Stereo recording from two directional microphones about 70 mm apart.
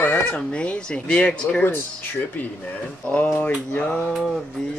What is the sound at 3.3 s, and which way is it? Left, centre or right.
Speech, left.